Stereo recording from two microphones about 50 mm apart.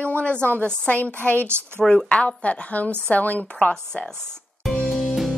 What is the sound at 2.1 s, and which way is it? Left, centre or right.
A woman's voice, left.